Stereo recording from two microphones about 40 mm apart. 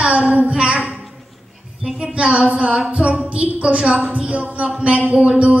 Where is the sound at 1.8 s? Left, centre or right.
Right.